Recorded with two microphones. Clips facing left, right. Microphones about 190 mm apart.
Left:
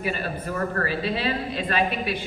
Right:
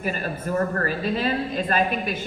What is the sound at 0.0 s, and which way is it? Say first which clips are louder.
A man's voice: right 1 dB; 45° right (ahead or behind).